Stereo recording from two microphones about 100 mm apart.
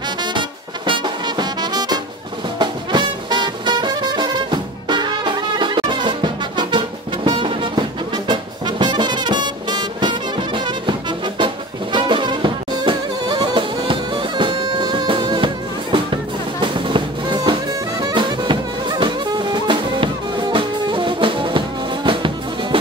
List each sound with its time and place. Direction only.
0.2 s music: 50° right (ahead or behind)
8.3 s brass instrument: 50° right (ahead or behind)
16.5 s music: 55° right (ahead or behind)